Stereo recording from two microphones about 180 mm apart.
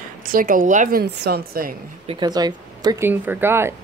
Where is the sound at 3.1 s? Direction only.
10° right (ahead or behind).